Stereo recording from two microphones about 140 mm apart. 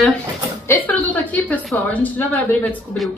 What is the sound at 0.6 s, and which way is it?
A woman's voice, 15° left (ahead or behind).